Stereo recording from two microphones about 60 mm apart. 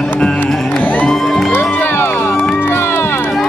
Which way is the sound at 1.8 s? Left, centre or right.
Left.